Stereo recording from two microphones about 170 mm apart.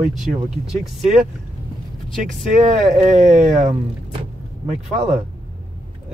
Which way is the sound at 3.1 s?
45° right (ahead or behind).